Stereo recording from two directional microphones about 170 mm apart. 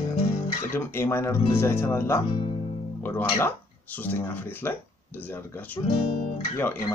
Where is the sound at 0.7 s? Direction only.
15° left (ahead or behind).